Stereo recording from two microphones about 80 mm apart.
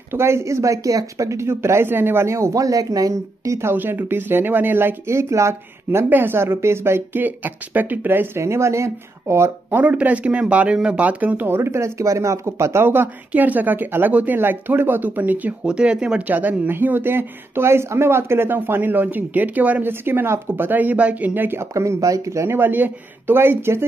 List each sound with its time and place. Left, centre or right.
0.1 s speech: right
3.7 s speech: right
9.8 s speech: centre